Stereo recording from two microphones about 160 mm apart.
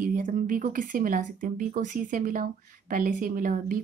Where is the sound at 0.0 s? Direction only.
55° right (ahead or behind).